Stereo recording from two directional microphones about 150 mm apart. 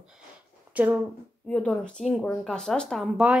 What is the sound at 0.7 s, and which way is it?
Speech, 10° right (ahead or behind).